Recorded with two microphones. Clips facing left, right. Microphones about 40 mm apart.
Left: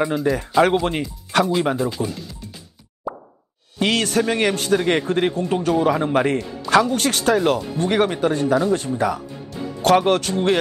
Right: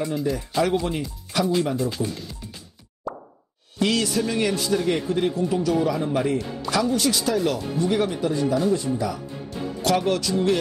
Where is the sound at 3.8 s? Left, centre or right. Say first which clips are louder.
Left 3 dB; left.